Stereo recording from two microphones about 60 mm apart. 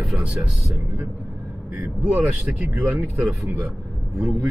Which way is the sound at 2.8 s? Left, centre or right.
Right.